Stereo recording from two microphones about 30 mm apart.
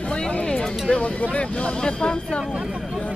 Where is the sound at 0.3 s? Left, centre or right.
Left.